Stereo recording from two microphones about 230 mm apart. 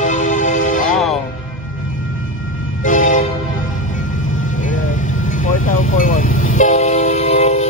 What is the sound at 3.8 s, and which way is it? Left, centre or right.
Music, left.